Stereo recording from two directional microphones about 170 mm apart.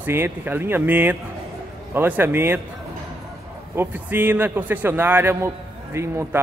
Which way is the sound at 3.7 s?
10° right (ahead or behind).